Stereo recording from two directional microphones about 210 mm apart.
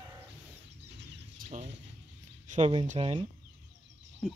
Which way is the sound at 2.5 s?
25° right (ahead or behind).